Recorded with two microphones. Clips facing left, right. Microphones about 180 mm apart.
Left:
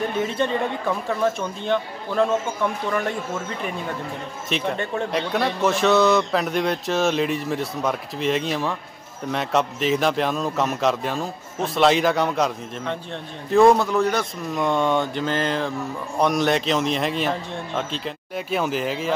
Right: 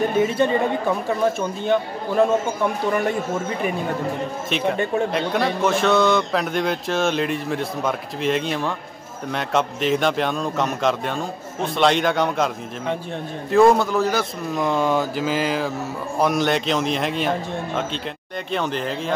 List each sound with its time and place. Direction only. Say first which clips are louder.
0.2 s speech: right 4 dB; 5° right (ahead or behind)
4.5 s a man's voice: right 2 dB; centre (ahead or behind)
13.5 s a man's voice: even; centre (ahead or behind)